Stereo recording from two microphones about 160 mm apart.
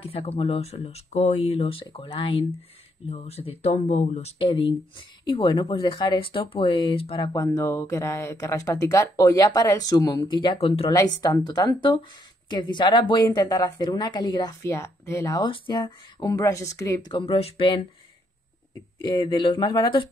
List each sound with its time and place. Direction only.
0.0 s speech: 40° left (ahead or behind)
7.3 s speech: 20° left (ahead or behind)
19.0 s speech: 30° left (ahead or behind)